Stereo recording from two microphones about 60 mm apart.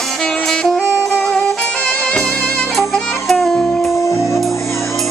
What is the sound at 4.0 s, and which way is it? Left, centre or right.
Music, left.